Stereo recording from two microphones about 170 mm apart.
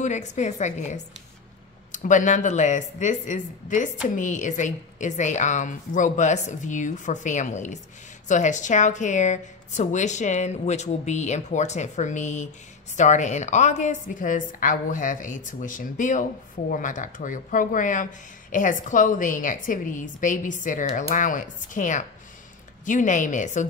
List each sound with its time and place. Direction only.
0.0 s a woman's voice: 45° left (ahead or behind)